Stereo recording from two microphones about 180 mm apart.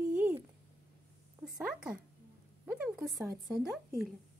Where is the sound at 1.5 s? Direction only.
5° right (ahead or behind).